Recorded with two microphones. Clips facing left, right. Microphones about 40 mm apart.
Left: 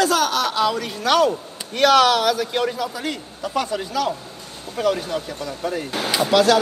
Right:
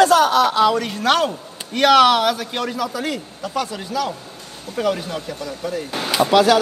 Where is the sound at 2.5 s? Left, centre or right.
Centre.